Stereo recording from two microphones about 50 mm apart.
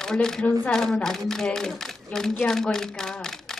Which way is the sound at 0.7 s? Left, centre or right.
Centre.